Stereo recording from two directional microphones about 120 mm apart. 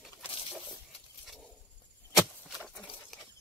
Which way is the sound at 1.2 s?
Centre (ahead or behind).